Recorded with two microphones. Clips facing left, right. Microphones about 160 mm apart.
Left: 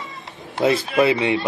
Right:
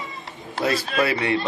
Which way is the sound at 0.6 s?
20° left (ahead or behind).